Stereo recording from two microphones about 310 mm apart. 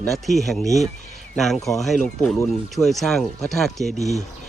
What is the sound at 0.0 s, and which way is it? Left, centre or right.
Speech, centre.